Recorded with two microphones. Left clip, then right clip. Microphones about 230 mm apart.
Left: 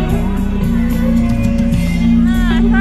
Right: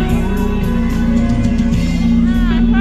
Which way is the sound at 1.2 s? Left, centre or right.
Left.